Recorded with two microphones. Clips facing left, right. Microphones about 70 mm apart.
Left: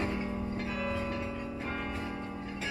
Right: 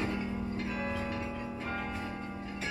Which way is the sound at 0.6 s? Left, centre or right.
Right.